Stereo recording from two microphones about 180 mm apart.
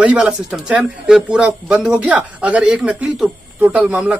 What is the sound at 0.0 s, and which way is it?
Speech, 5° right (ahead or behind).